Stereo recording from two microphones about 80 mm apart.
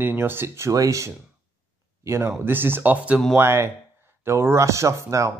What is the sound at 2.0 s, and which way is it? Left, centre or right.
Speech, right.